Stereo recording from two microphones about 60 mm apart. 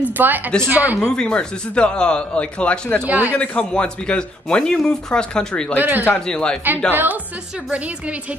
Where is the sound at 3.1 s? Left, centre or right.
Right.